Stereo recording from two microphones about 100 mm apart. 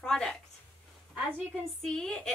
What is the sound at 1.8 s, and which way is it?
Speech, 5° left (ahead or behind).